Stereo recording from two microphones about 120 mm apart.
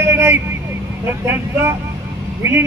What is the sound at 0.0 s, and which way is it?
Vehicle, 25° right (ahead or behind).